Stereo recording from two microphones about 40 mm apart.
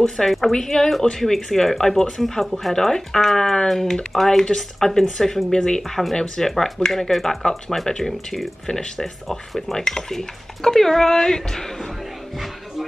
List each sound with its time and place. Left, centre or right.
0.5 s speech: centre
5.8 s speech: centre
6.1 s speech: centre